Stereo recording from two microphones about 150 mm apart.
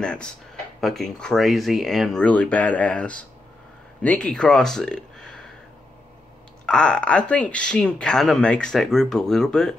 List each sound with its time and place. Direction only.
0.0 s speech: 5° left (ahead or behind)
6.6 s speech: 5° left (ahead or behind)